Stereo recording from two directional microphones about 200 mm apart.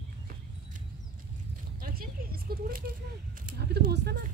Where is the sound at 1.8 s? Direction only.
45° right (ahead or behind).